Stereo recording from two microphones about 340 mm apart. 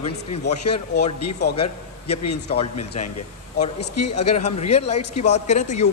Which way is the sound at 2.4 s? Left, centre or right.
Centre.